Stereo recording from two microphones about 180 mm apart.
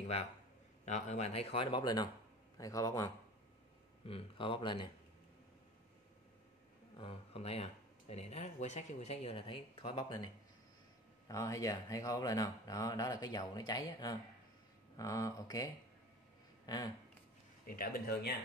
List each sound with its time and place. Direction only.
0.8 s speech: 40° left (ahead or behind); by 3.1 s 20° left (ahead or behind)
4.0 s speech: 30° left (ahead or behind)
7.0 s speech: 30° left (ahead or behind)
16.6 s a sound: 20° left (ahead or behind)
17.6 s speech: 55° left (ahead or behind)